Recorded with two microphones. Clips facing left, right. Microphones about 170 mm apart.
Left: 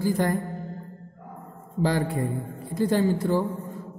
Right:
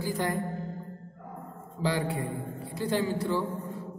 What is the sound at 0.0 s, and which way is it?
Music, 50° left (ahead or behind).